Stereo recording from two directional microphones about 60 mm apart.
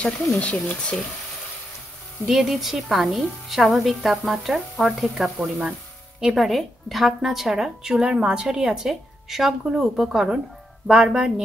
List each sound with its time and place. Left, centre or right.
0.0 s speech: left
2.2 s a woman's voice: centre
5.4 s speech: centre
6.3 s a woman's voice: centre